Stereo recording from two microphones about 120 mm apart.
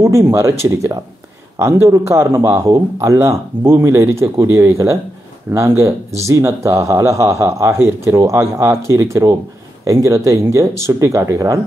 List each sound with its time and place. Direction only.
0.0 s a man's voice: 20° right (ahead or behind)